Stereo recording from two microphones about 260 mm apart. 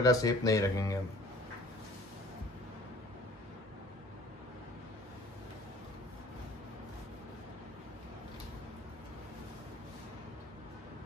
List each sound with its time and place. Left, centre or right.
0.0 s speech: centre